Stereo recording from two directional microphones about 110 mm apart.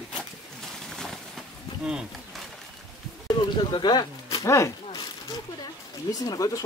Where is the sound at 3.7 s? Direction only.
40° left (ahead or behind).